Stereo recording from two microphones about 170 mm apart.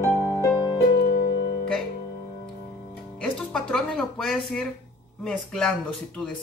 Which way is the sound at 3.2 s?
5° left (ahead or behind).